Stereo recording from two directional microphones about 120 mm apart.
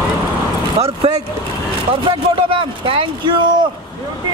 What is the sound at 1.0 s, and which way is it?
Vehicle, 65° right (ahead or behind).